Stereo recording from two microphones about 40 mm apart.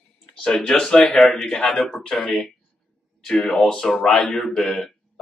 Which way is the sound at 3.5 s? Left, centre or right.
Centre.